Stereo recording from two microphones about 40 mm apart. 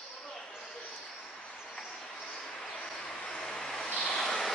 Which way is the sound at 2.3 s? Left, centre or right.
Centre.